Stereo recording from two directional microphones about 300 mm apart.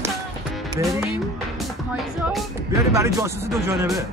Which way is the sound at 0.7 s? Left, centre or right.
Centre.